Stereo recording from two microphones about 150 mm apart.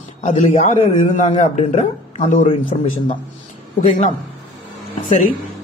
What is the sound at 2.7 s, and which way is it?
Speech, 45° left (ahead or behind).